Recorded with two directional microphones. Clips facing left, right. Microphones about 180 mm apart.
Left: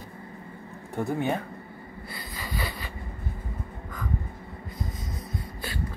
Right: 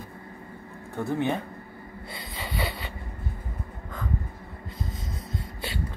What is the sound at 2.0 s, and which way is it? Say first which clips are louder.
Wood: right 1 dB; 25° right (ahead or behind).